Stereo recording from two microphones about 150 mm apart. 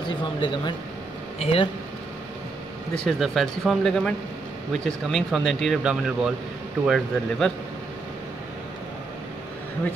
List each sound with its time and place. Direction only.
0.4 s speech: 35° left (ahead or behind)
2.9 s speech: 5° left (ahead or behind)